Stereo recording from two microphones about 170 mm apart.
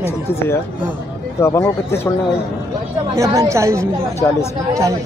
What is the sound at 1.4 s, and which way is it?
Speech, 15° left (ahead or behind).